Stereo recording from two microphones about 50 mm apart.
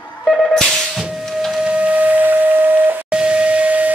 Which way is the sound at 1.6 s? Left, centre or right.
Right.